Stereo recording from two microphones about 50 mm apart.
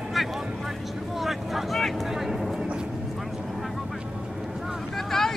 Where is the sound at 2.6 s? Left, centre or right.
Right.